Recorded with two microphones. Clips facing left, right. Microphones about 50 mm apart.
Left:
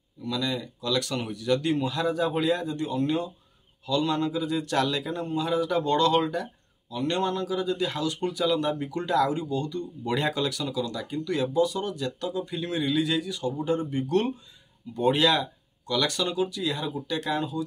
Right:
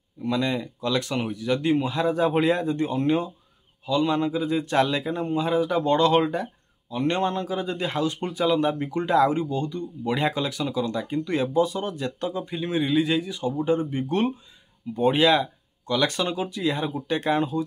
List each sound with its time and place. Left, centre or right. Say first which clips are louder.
0.2 s speech: right 4 dB; right
3.8 s speech: right 3 dB; centre
5.7 s speech: right 3 dB; centre
5.9 s speech: right 3 dB; right
10.0 s speech: right 2 dB; centre; by 17.6 s right